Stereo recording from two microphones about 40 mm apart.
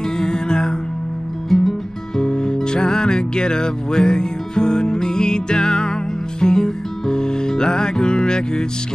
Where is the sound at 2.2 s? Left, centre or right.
Centre.